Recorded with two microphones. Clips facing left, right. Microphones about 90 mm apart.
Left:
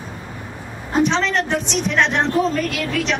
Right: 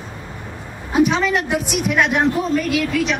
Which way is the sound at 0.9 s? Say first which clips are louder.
Right 2 dB; 10° right (ahead or behind).